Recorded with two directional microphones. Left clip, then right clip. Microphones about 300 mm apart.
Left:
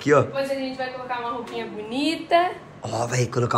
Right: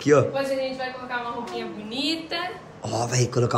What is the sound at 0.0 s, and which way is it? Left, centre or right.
Speech, centre.